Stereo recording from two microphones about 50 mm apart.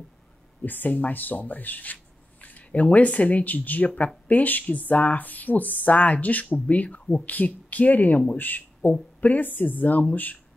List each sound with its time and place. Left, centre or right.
0.7 s a man's voice: left